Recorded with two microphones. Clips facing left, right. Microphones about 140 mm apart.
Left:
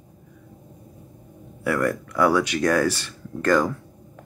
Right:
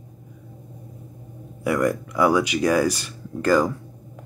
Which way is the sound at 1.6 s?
15° right (ahead or behind).